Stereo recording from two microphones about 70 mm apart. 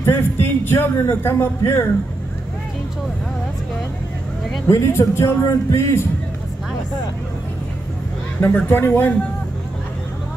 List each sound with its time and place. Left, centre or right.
0.0 s speech: left
4.6 s speech: left
8.4 s speech: left